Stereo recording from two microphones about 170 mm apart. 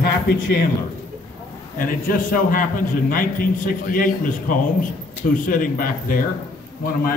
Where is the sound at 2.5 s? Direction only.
55° left (ahead or behind).